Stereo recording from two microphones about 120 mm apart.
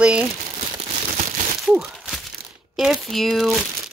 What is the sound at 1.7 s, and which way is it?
Crumpling, 5° right (ahead or behind).